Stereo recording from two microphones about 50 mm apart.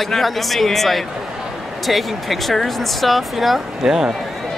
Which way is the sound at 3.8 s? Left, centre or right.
Centre.